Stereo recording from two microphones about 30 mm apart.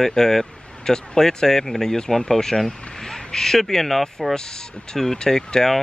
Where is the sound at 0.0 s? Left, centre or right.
Centre.